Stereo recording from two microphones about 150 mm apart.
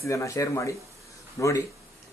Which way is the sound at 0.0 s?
20° left (ahead or behind).